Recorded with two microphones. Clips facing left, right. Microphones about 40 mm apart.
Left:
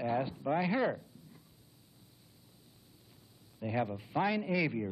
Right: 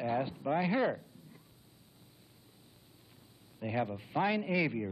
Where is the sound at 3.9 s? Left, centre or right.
Centre.